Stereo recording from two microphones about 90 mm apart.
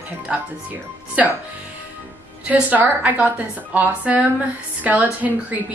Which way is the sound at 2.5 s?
15° right (ahead or behind).